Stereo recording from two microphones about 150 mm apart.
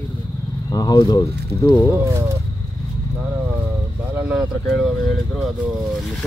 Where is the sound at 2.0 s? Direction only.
20° right (ahead or behind).